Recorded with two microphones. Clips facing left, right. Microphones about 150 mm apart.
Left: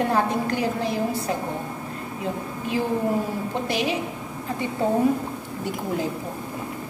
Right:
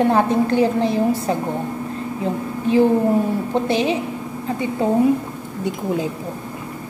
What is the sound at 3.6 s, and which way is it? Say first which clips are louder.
Speech: right 5 dB; 25° right (ahead or behind).